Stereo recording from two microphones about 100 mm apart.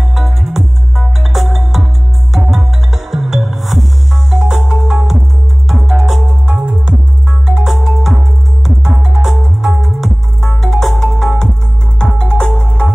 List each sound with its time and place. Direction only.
0.0 s music: centre (ahead or behind)